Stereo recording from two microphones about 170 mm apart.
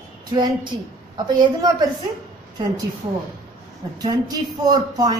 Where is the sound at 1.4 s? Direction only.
25° right (ahead or behind).